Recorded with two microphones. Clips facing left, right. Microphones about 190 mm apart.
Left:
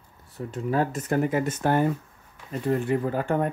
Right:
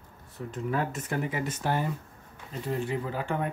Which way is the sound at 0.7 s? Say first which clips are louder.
Left 6 dB; 35° left (ahead or behind).